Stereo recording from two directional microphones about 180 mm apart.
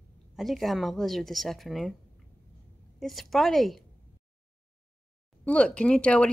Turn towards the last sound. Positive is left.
turn(degrees=5)  # may be behind; listen again after turning